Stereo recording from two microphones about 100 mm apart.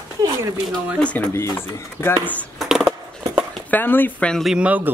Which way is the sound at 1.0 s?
15° left (ahead or behind).